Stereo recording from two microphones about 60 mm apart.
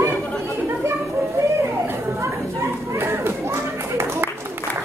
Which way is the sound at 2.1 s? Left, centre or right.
Right.